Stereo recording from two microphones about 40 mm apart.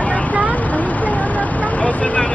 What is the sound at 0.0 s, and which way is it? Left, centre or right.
Vehicle, left.